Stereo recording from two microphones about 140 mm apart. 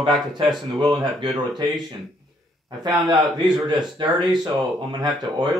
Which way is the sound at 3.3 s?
30° right (ahead or behind).